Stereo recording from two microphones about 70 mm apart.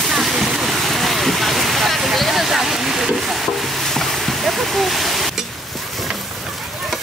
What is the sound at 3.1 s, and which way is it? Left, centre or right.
Stir, centre.